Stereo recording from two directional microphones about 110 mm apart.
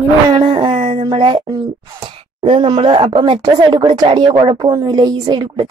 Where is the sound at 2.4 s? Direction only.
55° right (ahead or behind).